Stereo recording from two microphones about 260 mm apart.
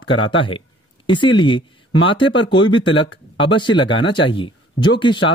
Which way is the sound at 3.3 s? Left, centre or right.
Centre.